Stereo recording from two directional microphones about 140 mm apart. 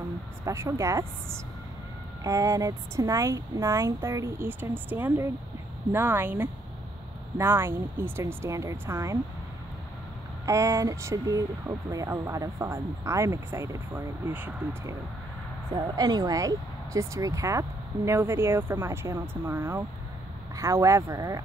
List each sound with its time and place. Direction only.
0.5 s speech: 20° right (ahead or behind)
2.2 s speech: 25° right (ahead or behind)
10.4 s speech: 20° right (ahead or behind)
15.7 s speech: 30° right (ahead or behind)